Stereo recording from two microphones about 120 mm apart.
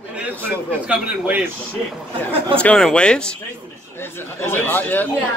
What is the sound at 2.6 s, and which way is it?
Speech, 5° left (ahead or behind).